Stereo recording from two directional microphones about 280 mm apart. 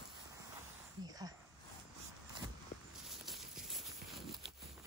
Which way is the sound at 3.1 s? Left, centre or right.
Centre.